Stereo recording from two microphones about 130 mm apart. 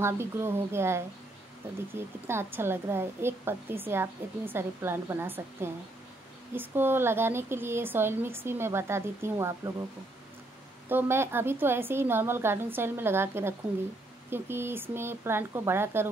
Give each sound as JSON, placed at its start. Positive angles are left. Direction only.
{"t": 0.0, "sound": "a woman's voice", "side_deg": -20}
{"t": 10.9, "sound": "a woman's voice", "side_deg": -15}